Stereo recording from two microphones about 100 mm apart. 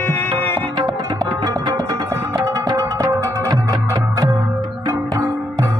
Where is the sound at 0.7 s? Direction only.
35° right (ahead or behind).